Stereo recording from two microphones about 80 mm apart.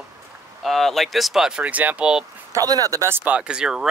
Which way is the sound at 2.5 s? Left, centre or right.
Right.